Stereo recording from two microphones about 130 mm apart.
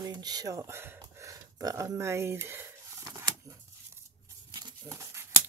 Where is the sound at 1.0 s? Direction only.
25° right (ahead or behind).